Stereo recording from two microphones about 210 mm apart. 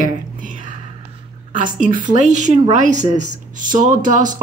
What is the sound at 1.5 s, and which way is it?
A woman's voice, 40° right (ahead or behind).